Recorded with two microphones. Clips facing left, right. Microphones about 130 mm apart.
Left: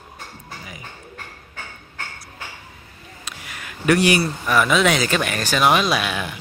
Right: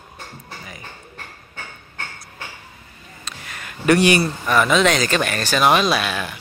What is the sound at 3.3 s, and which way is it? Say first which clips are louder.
Speech: right 1 dB; 10° left (ahead or behind).